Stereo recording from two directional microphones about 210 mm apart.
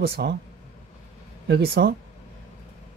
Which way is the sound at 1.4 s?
50° right (ahead or behind).